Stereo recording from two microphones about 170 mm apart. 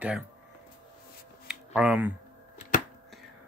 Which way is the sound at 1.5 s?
5° right (ahead or behind).